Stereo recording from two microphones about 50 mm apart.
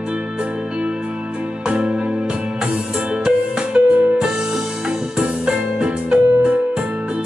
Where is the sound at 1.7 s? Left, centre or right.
Centre.